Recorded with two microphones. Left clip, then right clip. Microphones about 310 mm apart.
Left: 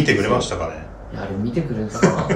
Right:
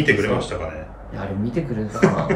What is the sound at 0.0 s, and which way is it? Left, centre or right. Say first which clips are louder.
Speech: left 1 dB; centre.